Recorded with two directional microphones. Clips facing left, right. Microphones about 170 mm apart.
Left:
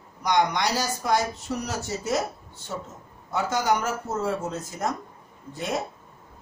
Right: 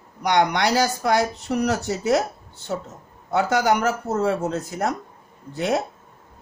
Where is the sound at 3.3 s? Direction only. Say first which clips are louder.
Right 5 dB; 70° right (ahead or behind).